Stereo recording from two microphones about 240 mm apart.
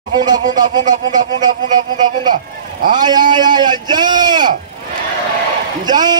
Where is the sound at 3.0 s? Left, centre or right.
Centre.